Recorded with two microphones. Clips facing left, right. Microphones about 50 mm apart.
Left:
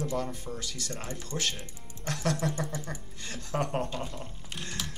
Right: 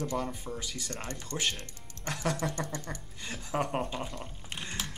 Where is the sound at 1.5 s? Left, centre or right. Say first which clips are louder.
Left 1 dB; centre.